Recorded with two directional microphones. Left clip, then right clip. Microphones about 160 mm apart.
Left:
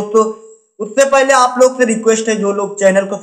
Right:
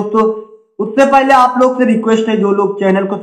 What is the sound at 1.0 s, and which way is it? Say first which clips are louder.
Speech: right 2 dB; 35° left (ahead or behind).